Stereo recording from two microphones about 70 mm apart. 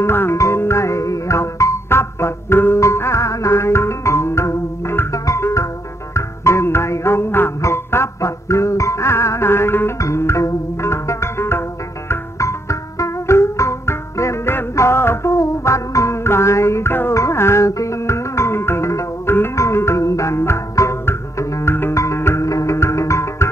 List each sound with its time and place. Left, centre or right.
0.0 s music: left
15.3 s music: left